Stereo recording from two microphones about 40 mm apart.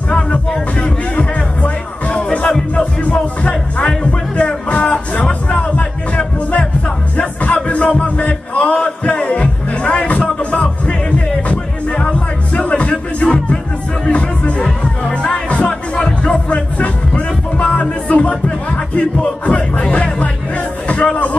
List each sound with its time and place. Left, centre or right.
0.1 s music: left
8.7 s music: left